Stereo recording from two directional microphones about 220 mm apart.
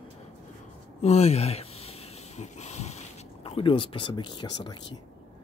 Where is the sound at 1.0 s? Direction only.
30° left (ahead or behind).